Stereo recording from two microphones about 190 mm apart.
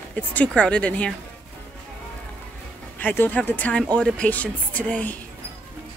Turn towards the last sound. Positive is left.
turn(degrees=5)  # may be behind; listen again after turning